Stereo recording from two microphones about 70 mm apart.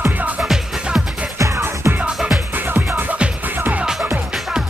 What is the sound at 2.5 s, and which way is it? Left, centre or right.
Music, right.